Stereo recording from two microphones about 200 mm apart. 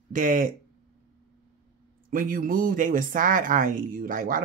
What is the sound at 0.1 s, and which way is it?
Speech, 40° right (ahead or behind).